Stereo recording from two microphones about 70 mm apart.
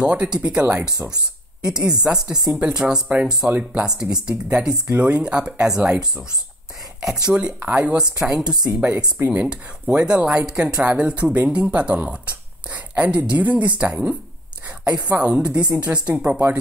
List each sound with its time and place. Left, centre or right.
0.0 s speech: centre